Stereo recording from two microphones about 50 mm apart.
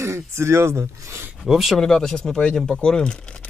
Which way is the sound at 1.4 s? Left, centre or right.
Centre.